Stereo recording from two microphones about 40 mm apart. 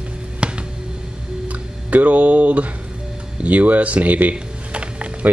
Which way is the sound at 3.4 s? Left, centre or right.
Right.